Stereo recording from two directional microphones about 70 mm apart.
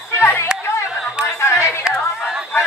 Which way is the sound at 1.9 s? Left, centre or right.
Centre.